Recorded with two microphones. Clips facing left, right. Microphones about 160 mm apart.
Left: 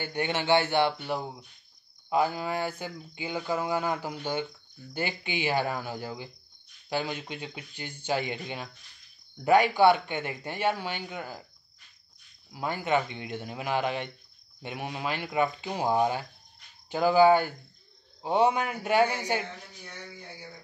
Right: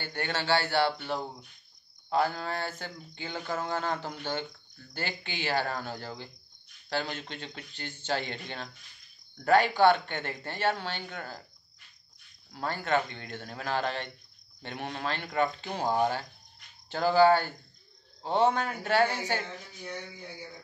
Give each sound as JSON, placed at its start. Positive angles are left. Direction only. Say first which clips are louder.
{"t": 0.0, "sound": "speech", "louder": "left 4 dB", "side_deg": 15}
{"t": 12.5, "sound": "speech", "louder": "left 2 dB", "side_deg": 10}